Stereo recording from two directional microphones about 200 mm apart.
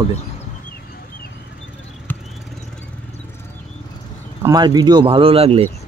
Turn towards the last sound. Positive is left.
turn(degrees=-30)  # may be behind; listen again after turning